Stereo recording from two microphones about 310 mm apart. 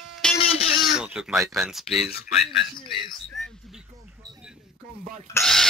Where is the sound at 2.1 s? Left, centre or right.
Left.